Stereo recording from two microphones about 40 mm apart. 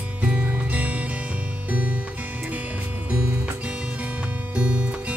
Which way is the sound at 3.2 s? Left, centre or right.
Right.